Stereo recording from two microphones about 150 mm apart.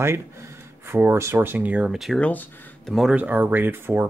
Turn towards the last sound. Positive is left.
turn(degrees=-15)  # may be behind; listen again after turning